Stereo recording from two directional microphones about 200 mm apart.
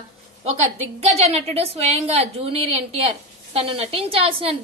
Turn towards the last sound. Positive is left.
turn(degrees=-30)  # may be behind; listen again after turning